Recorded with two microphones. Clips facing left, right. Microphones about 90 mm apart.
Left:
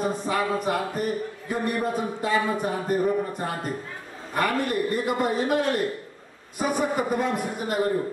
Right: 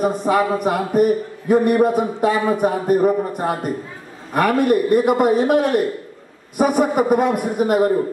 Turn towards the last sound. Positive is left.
turn(degrees=-60)  # may be behind; listen again after turning